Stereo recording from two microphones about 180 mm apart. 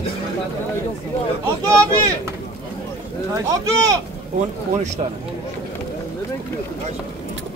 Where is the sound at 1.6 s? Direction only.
15° right (ahead or behind).